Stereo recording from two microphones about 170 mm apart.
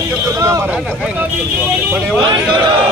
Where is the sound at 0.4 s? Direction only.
20° right (ahead or behind).